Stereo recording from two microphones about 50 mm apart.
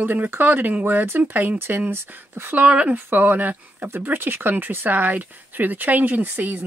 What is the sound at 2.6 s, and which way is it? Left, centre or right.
Speech, right.